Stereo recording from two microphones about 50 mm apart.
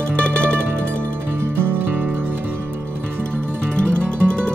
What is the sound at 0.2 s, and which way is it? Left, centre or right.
Music, left.